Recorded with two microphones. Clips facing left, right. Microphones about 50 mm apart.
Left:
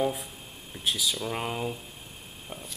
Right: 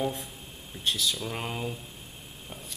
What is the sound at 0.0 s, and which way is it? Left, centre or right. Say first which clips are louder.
Speech: left 3 dB; centre.